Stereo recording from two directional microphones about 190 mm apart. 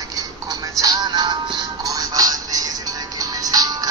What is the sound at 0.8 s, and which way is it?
Music, 20° right (ahead or behind).